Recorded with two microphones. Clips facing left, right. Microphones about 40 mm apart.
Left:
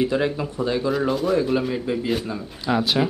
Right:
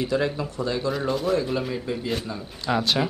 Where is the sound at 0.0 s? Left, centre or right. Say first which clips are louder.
Left 3 dB; left.